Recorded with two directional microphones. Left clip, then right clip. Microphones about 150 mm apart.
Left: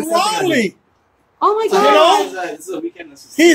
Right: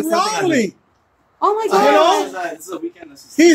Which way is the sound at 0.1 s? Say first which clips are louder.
Left 2 dB; 15° right (ahead or behind).